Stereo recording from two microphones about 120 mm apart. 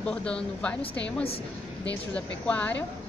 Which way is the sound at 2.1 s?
10° left (ahead or behind).